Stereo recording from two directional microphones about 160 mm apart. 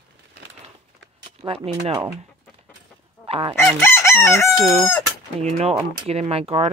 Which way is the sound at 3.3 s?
35° right (ahead or behind).